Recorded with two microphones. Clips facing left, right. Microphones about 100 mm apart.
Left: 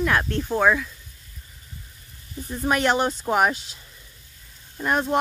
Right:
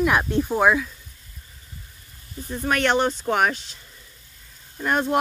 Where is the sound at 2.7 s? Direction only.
5° left (ahead or behind).